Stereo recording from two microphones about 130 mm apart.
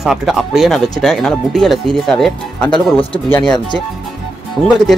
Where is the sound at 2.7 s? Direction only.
45° left (ahead or behind).